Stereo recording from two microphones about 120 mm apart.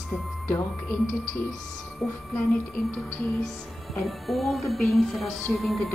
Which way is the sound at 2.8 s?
Centre (ahead or behind).